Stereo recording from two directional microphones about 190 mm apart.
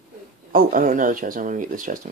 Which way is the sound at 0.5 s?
45° right (ahead or behind).